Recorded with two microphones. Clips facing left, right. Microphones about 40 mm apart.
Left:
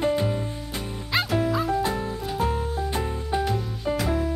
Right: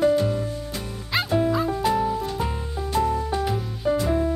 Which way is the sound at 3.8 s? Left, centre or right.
Centre.